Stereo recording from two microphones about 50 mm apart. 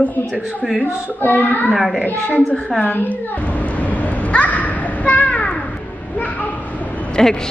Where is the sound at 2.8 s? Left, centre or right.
Left.